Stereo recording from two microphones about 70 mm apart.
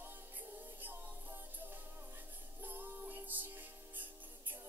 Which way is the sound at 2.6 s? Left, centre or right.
Right.